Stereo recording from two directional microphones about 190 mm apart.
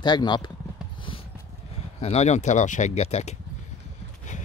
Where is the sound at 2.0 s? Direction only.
35° left (ahead or behind).